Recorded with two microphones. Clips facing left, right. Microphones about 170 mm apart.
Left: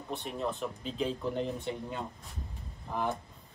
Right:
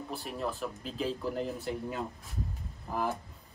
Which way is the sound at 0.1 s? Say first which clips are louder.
Left 2 dB; centre (ahead or behind).